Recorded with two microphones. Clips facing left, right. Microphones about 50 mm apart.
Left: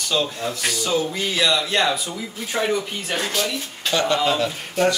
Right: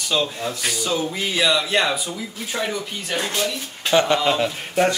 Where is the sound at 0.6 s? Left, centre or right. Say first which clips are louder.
Left 2 dB; centre.